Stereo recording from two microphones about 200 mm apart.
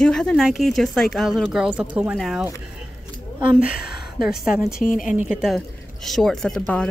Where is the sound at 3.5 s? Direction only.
5° right (ahead or behind).